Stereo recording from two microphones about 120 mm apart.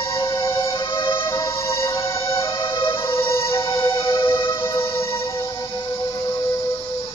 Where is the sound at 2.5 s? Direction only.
45° left (ahead or behind).